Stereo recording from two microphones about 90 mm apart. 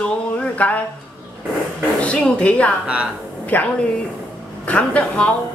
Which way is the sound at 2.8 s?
15° right (ahead or behind).